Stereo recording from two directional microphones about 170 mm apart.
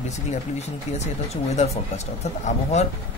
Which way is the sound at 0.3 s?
40° left (ahead or behind).